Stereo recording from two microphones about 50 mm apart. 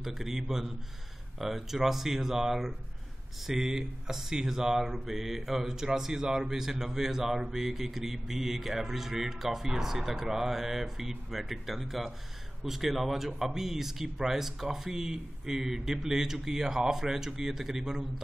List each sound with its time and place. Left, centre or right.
0.0 s mantra: centre